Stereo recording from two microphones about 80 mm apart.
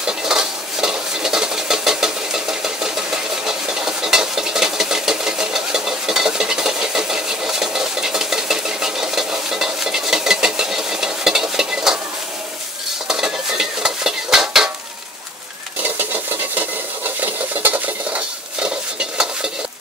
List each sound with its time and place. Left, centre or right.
0.0 s stir: centre
13.1 s stir: centre
16.0 s stir: right